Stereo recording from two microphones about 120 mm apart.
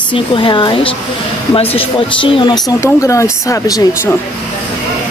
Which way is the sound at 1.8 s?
45° left (ahead or behind).